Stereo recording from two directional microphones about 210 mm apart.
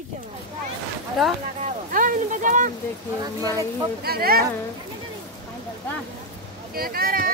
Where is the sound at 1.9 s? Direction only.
40° right (ahead or behind).